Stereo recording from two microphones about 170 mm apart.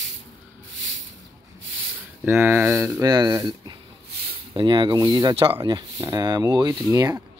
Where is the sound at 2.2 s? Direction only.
15° right (ahead or behind).